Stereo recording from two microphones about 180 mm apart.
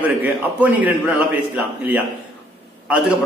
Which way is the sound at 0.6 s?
10° right (ahead or behind).